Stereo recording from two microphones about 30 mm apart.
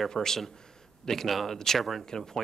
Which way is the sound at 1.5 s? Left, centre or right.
Centre.